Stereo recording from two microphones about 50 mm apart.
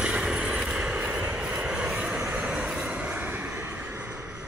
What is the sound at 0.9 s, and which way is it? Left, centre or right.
Vehicle, right.